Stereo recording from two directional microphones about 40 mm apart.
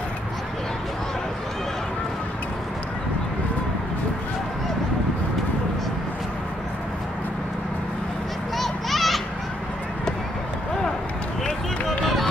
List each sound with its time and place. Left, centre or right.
8.5 s children playing: centre
11.4 s run: left